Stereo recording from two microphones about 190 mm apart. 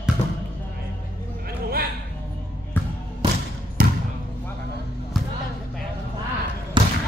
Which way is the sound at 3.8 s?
50° right (ahead or behind).